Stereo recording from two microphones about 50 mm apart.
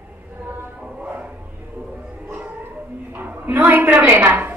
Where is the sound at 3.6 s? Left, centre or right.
Right.